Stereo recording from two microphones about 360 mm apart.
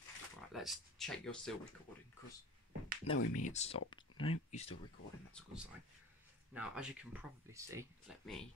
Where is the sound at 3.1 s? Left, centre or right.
Left.